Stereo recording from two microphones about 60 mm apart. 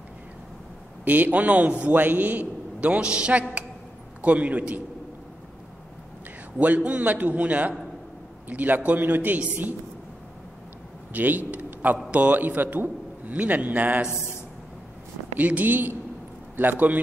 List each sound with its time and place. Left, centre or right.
1.0 s a man's voice: right
6.6 s a man's voice: right
11.1 s a man's voice: right
15.3 s a man's voice: right